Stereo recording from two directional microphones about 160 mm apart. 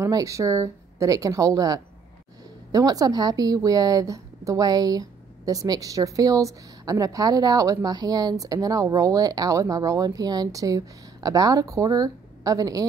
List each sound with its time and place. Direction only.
0.0 s speech: 20° right (ahead or behind)